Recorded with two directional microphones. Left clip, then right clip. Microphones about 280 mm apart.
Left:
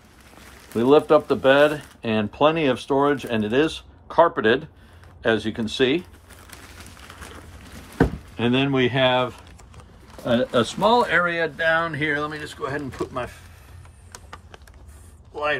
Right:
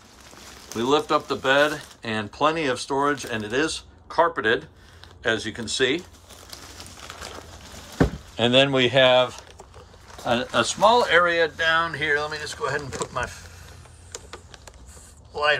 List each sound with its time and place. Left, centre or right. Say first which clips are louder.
0.7 s speech: left 5 dB; centre
8.4 s speech: right 3 dB; centre